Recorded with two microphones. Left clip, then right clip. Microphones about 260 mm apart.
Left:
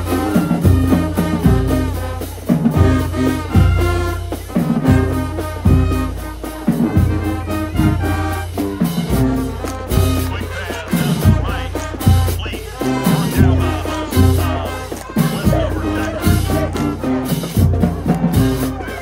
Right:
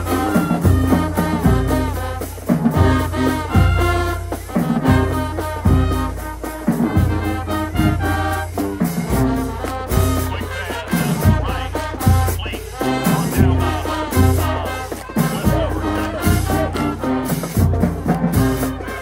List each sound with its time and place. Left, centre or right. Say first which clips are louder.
0.1 s music: left 1 dB; centre
12.8 s music: left 1 dB; centre
13.6 s music: even; centre
15.4 s music: left 2 dB; centre